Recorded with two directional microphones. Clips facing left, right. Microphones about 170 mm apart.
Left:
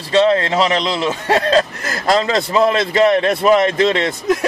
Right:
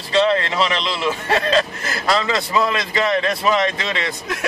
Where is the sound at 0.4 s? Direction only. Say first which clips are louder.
Left 5 dB; 40° left (ahead or behind).